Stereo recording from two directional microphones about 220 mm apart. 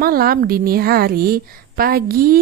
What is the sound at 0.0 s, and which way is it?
A woman's voice, 40° right (ahead or behind).